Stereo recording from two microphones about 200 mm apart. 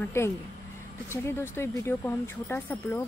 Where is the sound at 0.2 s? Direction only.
10° left (ahead or behind).